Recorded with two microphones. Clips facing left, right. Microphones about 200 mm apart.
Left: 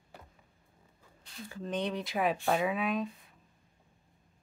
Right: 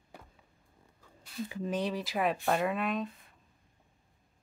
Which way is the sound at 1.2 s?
10° right (ahead or behind).